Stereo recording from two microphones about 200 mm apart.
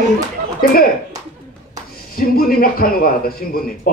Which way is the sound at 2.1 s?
45° left (ahead or behind).